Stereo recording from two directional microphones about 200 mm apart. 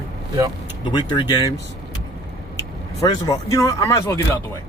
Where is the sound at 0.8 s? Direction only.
20° left (ahead or behind).